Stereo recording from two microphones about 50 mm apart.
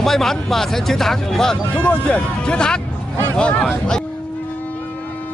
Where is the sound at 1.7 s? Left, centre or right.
Left.